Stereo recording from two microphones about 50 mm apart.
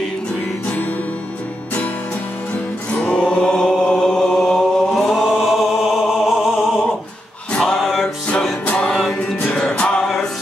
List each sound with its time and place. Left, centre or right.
3.0 s chant: centre
5.9 s music: centre
7.6 s music: centre
8.7 s music: centre
9.9 s music: centre